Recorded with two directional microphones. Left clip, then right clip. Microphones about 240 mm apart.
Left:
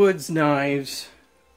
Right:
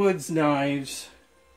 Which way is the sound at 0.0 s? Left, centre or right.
Left.